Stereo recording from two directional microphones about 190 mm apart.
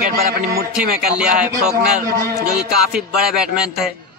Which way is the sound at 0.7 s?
5° right (ahead or behind).